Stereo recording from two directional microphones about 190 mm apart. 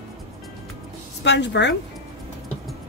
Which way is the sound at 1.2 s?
65° left (ahead or behind).